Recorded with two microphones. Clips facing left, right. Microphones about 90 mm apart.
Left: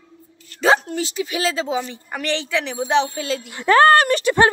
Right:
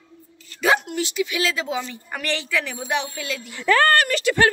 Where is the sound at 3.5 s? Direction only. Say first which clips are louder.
Left 2 dB; 55° left (ahead or behind).